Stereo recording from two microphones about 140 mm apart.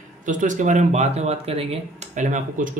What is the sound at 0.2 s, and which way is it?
Speech, 65° right (ahead or behind).